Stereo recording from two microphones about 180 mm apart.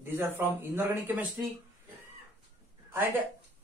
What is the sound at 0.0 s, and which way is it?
Speech, 10° right (ahead or behind).